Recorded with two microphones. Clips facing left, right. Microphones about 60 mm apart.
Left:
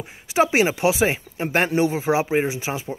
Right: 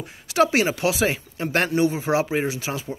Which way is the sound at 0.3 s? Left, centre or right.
Centre.